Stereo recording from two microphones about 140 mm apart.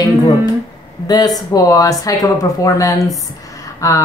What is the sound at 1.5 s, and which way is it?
Speech, 25° left (ahead or behind).